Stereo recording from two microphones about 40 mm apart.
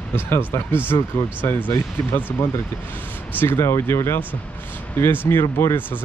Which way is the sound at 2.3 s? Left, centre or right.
Left.